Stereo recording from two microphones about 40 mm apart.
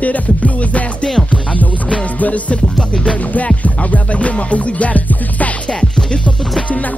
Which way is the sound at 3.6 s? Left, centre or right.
Left.